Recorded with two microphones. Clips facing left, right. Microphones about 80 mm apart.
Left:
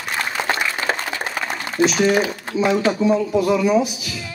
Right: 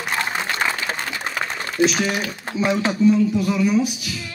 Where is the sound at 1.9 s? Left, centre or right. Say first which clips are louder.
Left 5 dB; centre.